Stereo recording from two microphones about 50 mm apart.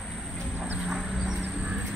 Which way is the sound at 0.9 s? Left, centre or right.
Centre.